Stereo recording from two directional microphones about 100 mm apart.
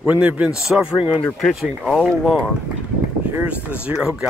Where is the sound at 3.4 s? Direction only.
10° right (ahead or behind).